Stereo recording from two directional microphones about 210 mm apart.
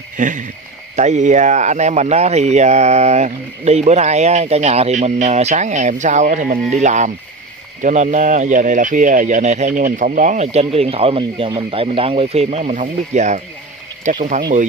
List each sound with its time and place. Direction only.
0.2 s speech: 35° right (ahead or behind)